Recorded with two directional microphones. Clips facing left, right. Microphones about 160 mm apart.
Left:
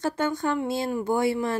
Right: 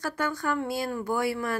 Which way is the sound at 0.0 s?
25° left (ahead or behind).